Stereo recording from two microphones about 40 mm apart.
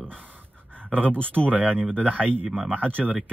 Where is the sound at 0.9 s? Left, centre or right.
Left.